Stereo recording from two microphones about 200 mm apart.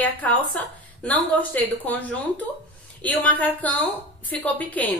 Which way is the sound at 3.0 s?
10° left (ahead or behind).